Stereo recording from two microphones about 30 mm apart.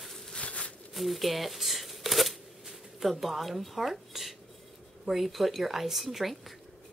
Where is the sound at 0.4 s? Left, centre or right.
Left.